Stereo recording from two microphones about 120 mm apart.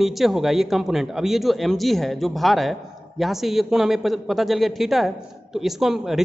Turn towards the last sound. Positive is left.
turn(degrees=-5)  # may be behind; listen again after turning